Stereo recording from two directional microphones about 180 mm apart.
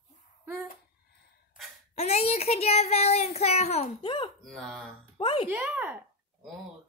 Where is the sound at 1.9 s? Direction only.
35° left (ahead or behind).